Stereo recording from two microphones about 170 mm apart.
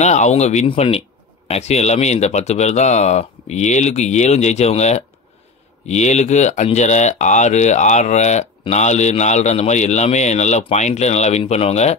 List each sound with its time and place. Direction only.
0.0 s speech: 45° left (ahead or behind)